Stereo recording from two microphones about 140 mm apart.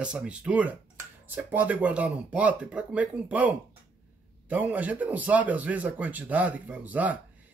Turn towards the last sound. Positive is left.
turn(degrees=-10)  # may be behind; listen again after turning